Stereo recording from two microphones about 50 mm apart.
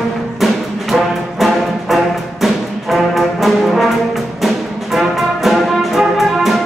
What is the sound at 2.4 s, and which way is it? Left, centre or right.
Brass instrument, centre.